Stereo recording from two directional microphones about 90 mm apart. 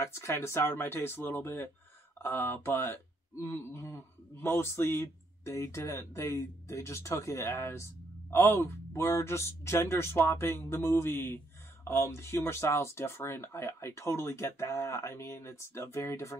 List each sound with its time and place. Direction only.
0.0 s speech: 30° left (ahead or behind)